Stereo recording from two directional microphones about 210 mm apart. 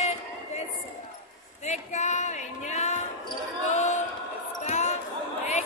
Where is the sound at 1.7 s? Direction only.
35° left (ahead or behind).